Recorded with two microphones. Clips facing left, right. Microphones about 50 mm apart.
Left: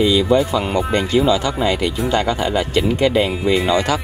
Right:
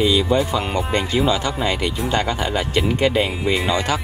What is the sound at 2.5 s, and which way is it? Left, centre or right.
Speech, right.